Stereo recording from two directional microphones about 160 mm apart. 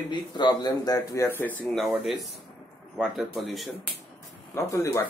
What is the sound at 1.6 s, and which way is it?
Speech, centre (ahead or behind).